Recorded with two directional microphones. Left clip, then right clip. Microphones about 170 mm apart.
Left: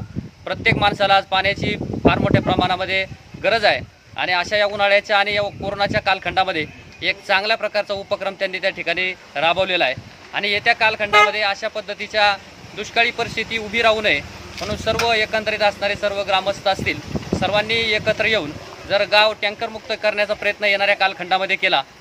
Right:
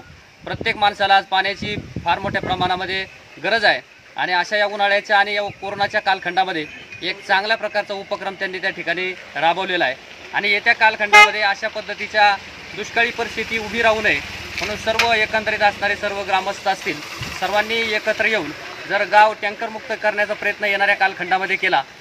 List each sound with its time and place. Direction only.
0.5 s speech: 35° left (ahead or behind)